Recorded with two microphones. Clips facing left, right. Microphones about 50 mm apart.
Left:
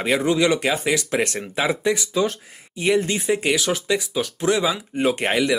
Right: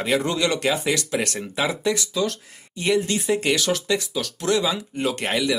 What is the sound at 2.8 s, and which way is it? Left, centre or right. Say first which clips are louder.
Speech: left 2 dB; centre.